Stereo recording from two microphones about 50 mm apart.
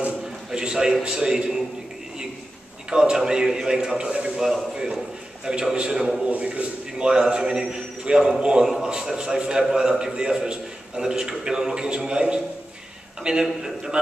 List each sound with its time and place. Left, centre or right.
0.5 s a man's voice: centre
2.9 s a man's voice: centre
6.2 s a man's voice: right